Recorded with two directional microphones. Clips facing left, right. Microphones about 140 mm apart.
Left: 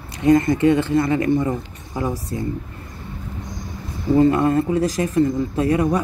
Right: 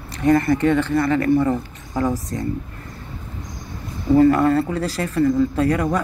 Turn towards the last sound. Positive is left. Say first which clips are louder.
# left 1 dB
turn(degrees=15)  # may be behind; listen again after turning